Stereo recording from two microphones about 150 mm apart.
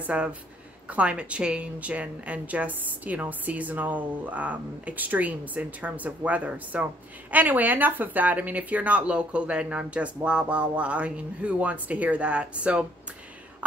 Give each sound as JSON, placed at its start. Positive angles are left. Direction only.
{"t": 0.0, "sound": "speech", "side_deg": -10}